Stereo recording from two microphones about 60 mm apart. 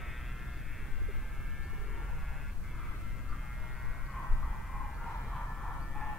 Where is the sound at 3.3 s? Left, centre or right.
Centre.